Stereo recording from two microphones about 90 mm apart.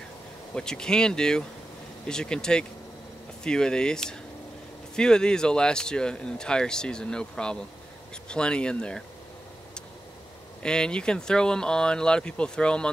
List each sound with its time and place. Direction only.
0.6 s speech: 10° left (ahead or behind)
10.6 s speech: 10° left (ahead or behind)